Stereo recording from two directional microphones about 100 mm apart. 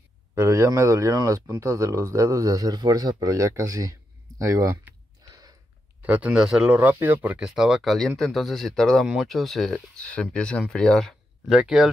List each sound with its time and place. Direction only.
0.3 s speech: 25° right (ahead or behind)
6.0 s speech: 15° right (ahead or behind)